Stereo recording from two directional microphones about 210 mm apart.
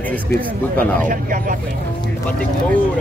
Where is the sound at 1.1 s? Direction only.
40° right (ahead or behind).